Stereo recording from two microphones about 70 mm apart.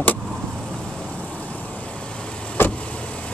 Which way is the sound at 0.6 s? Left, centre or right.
Centre.